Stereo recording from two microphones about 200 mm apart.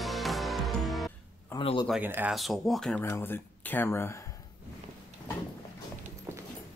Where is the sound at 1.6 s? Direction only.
25° left (ahead or behind).